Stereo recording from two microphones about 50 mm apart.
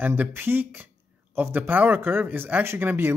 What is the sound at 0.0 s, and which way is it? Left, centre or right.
Speech, right.